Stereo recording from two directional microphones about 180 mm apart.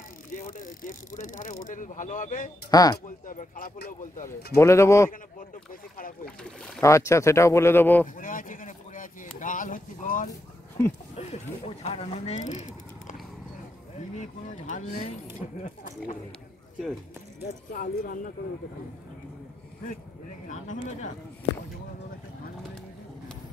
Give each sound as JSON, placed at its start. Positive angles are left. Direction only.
{"t": 0.3, "sound": "speech", "side_deg": 50}
{"t": 2.7, "sound": "speech", "side_deg": 20}
{"t": 3.3, "sound": "speech", "side_deg": 50}
{"t": 4.6, "sound": "speech", "side_deg": 15}
{"t": 5.1, "sound": "speech", "side_deg": 50}
{"t": 6.2, "sound": "speech", "side_deg": 5}
{"t": 6.8, "sound": "speech", "side_deg": 15}
{"t": 8.2, "sound": "speech", "side_deg": 50}
{"t": 14.1, "sound": "speech", "side_deg": 40}
{"t": 17.7, "sound": "speech", "side_deg": 50}
{"t": 20.4, "sound": "speech", "side_deg": 45}